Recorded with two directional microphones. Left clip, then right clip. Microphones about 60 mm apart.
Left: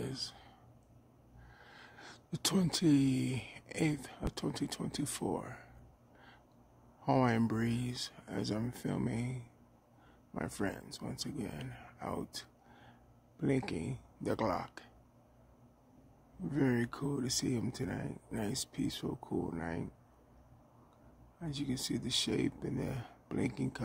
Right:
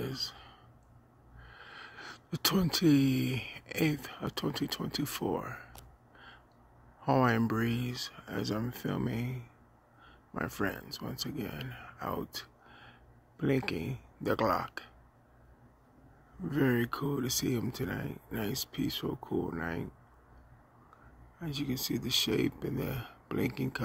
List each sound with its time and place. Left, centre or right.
0.0 s a sound: centre
1.4 s sneeze: right
2.6 s speech: right
6.1 s a sound: centre
7.2 s speech: centre
16.4 s speech: right
19.6 s speech: right
21.4 s speech: centre